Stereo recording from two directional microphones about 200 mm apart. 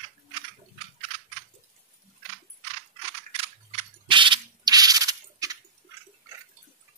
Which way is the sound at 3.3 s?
25° right (ahead or behind).